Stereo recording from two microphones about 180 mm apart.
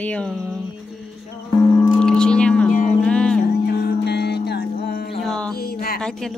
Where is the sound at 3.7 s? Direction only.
70° left (ahead or behind).